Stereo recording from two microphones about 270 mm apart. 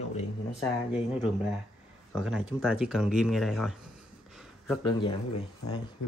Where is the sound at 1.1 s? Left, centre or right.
Centre.